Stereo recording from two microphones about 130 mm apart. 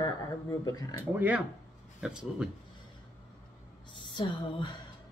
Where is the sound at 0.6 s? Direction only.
30° left (ahead or behind).